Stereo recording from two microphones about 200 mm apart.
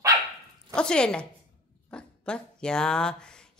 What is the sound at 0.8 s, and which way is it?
Speech, 5° left (ahead or behind).